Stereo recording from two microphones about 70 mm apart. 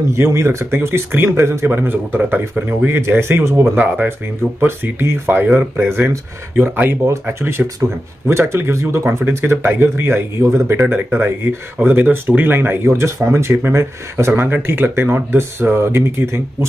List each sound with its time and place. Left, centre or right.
0.1 s speech: right
2.9 s speech: right